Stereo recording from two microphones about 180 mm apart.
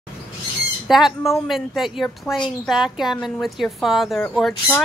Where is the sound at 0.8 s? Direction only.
Centre (ahead or behind).